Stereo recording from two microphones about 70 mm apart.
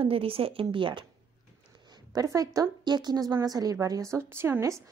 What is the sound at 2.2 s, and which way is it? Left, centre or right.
A woman's voice, right.